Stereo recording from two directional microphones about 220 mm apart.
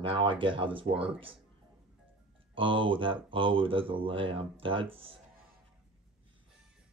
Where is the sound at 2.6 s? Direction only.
25° right (ahead or behind).